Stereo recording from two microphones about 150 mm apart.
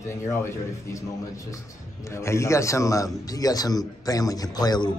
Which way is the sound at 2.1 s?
20° left (ahead or behind).